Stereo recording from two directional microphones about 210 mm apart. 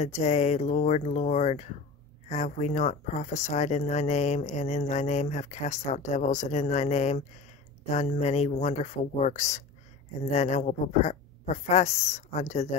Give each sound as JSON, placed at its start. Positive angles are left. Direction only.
{"t": 0.0, "sound": "speech", "side_deg": 30}